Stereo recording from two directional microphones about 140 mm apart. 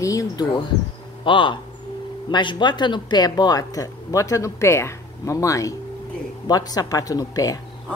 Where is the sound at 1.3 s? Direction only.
35° left (ahead or behind).